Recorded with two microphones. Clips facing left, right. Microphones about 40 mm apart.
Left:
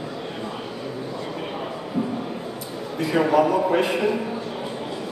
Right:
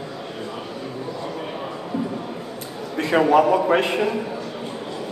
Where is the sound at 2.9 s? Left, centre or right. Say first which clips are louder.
Right 3 dB; right.